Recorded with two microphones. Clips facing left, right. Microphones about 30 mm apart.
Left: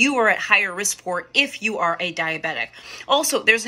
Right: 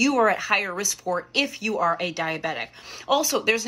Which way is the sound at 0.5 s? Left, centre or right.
Centre.